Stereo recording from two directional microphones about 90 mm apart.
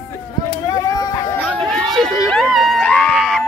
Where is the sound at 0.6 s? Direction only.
40° left (ahead or behind).